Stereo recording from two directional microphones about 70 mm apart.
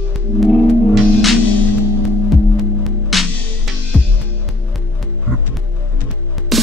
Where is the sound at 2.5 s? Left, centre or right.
Centre.